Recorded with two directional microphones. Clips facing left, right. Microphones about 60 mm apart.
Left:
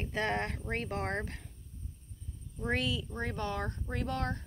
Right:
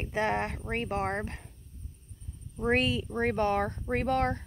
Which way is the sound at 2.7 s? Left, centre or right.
Right.